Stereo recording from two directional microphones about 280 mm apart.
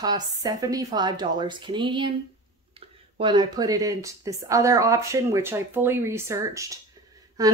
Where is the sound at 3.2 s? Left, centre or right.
Centre.